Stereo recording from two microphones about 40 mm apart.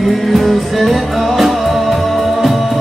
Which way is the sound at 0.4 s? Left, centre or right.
Centre.